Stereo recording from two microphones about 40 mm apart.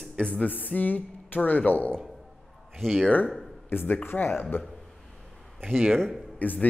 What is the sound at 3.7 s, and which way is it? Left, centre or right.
Speech, left.